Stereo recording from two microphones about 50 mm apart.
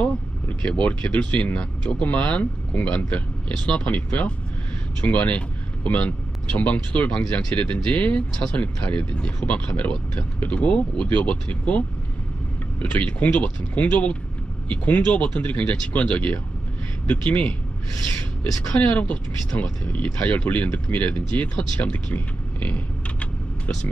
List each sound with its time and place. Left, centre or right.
0.0 s speech: left
8.3 s speech: centre
8.5 s speech: left
12.9 s speech: left